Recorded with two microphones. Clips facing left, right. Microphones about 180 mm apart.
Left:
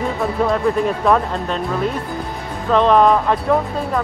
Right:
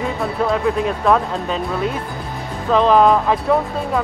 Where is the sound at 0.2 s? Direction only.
Centre (ahead or behind).